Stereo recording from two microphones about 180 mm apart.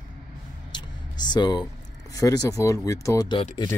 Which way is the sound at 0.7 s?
25° left (ahead or behind).